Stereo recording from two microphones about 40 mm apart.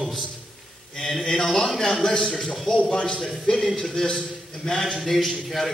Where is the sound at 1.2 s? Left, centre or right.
Centre.